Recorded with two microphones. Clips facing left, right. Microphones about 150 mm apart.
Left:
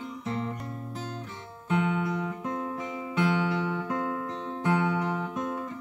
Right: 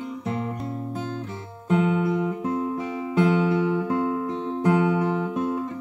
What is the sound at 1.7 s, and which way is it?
Music, 20° right (ahead or behind).